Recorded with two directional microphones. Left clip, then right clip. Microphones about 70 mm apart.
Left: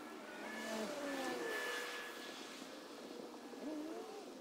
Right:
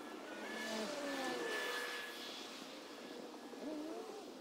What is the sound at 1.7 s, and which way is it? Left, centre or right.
Vehicle, right.